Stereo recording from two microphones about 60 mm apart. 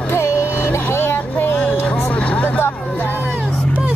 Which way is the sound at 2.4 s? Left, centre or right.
Left.